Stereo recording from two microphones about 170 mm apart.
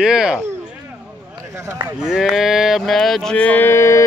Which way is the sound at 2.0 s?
Centre (ahead or behind).